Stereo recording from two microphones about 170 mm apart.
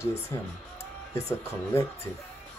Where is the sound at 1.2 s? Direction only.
15° left (ahead or behind).